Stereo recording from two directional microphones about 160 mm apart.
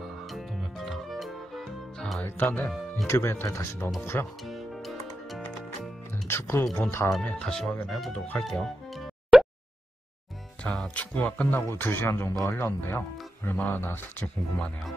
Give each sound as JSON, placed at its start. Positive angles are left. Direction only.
{"t": 0.0, "sound": "music", "side_deg": 0}
{"t": 2.2, "sound": "speech", "side_deg": 10}
{"t": 4.5, "sound": "music", "side_deg": 0}
{"t": 6.2, "sound": "music", "side_deg": 15}
{"t": 6.8, "sound": "speech", "side_deg": 15}
{"t": 7.1, "sound": "speech", "side_deg": 5}
{"t": 10.6, "sound": "speech", "side_deg": 5}